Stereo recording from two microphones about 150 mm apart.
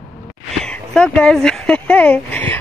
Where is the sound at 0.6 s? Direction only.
5° left (ahead or behind).